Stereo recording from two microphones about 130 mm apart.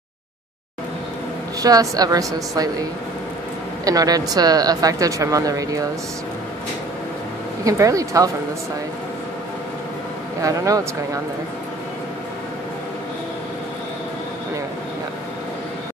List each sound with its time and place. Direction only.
1.6 s speech: 30° right (ahead or behind)
7.6 s speech: 25° right (ahead or behind)
10.4 s speech: 25° right (ahead or behind)